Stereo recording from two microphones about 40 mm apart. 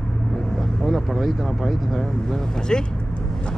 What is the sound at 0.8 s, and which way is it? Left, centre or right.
Speech, centre.